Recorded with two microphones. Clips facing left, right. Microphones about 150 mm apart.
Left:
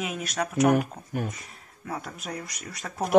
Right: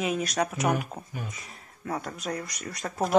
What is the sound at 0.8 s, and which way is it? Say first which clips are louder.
Speech: left 7 dB; 50° left (ahead or behind).